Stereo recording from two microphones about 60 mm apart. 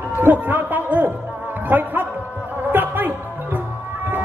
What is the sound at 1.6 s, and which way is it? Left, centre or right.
Music, right.